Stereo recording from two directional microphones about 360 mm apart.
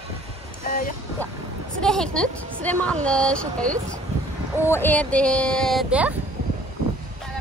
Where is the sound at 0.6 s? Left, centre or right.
Left.